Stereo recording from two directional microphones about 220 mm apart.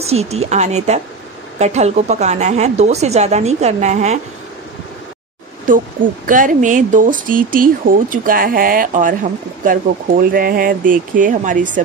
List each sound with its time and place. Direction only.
0.0 s speech: 30° right (ahead or behind)
5.7 s speech: 40° right (ahead or behind)